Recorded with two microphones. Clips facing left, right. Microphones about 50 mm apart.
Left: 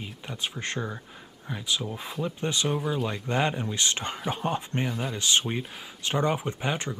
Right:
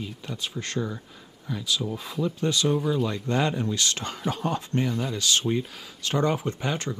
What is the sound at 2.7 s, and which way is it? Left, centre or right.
Speech, centre.